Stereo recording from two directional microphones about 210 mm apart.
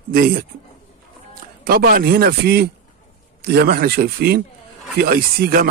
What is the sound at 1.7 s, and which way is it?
Speech, 45° right (ahead or behind).